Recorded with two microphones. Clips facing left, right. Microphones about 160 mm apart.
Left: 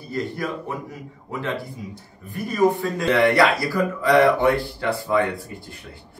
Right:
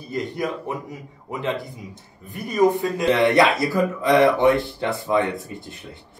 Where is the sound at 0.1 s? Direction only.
20° right (ahead or behind).